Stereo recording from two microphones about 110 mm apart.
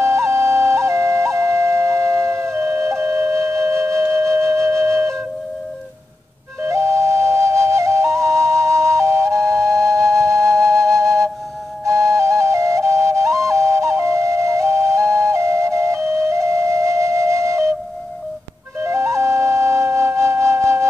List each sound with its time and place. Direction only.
0.0 s flute: 25° right (ahead or behind)
6.6 s flute: 25° right (ahead or behind)
18.8 s flute: 25° right (ahead or behind)